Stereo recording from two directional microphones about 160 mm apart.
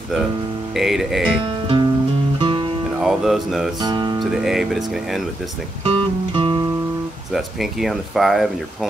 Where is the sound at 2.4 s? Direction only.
30° right (ahead or behind).